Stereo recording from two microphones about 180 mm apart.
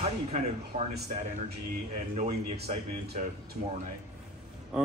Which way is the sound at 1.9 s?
45° right (ahead or behind).